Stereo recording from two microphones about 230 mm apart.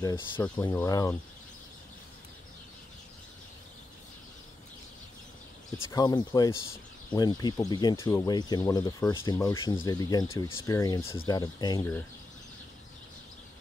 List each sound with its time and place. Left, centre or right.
0.0 s speech: centre
5.9 s speech: centre